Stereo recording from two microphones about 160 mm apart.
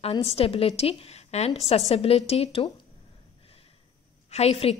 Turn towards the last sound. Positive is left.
turn(degrees=40)  # may be behind; listen again after turning